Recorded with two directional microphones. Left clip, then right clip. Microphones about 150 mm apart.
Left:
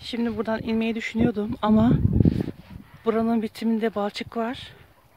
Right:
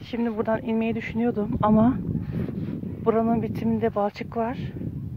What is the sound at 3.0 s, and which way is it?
Speech, 20° left (ahead or behind).